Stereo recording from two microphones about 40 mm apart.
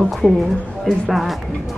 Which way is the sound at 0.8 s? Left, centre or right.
Centre.